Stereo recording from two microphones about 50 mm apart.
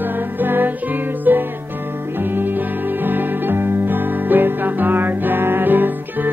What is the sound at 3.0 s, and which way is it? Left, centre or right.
Music, right.